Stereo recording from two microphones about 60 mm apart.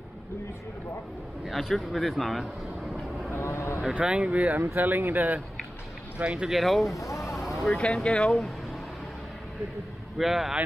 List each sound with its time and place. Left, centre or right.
1.4 s speech: centre
3.3 s vehicle: left
3.8 s speech: centre
6.2 s speech: centre
6.6 s speech: centre
6.9 s speech: left
7.3 s vehicle: centre
7.7 s speech: centre
10.1 s speech: centre